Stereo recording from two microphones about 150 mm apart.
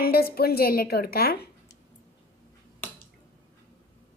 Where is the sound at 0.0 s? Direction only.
90° left.